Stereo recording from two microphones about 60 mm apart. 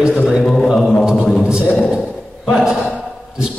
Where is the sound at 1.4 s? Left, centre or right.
Centre.